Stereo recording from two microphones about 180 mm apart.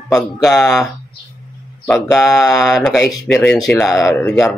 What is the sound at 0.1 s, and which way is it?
Speech, centre (ahead or behind).